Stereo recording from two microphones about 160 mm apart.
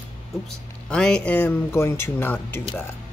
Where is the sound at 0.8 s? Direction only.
5° left (ahead or behind).